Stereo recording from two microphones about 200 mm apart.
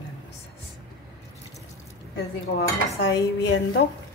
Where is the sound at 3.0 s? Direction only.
65° left (ahead or behind).